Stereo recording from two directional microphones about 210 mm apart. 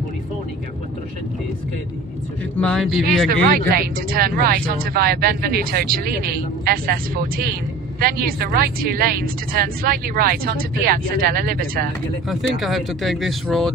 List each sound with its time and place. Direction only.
2.6 s speech: 5° left (ahead or behind)
3.3 s speech: 45° right (ahead or behind)
12.3 s speech: centre (ahead or behind)